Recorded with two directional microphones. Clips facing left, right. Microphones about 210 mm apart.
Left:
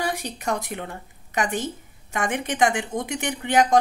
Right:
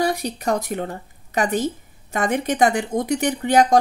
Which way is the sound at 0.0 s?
40° right (ahead or behind).